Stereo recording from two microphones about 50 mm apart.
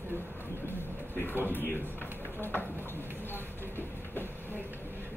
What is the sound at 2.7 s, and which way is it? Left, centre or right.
Speech, left.